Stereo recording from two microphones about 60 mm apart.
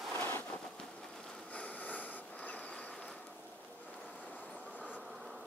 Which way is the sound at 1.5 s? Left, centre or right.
Left.